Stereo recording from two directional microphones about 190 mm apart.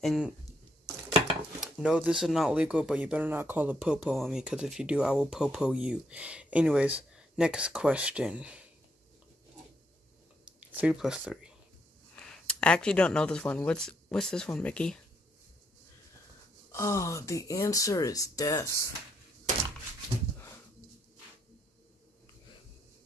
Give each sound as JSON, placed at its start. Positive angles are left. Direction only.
{"t": 0.0, "sound": "speech", "side_deg": 0}
{"t": 1.3, "sound": "speech", "side_deg": -5}
{"t": 10.4, "sound": "speech", "side_deg": -5}
{"t": 16.7, "sound": "speech", "side_deg": 15}